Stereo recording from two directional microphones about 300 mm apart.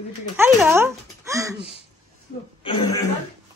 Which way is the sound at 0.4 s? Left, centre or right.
Centre.